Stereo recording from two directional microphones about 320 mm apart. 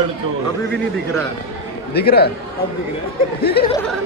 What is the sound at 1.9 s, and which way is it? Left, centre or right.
Speech, left.